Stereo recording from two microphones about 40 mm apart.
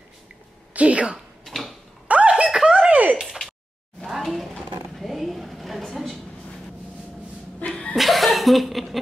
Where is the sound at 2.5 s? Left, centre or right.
Centre.